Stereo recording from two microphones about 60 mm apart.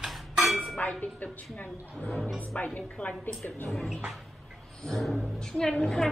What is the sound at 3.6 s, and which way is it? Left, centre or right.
A woman's voice, centre.